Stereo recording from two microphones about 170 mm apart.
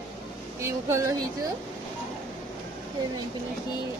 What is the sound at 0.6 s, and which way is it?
Speech, 15° right (ahead or behind).